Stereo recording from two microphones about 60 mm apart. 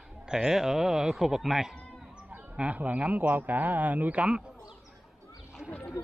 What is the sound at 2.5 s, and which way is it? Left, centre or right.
Speech, right.